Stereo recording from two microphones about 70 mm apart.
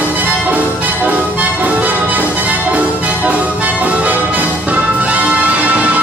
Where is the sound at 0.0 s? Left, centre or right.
Right.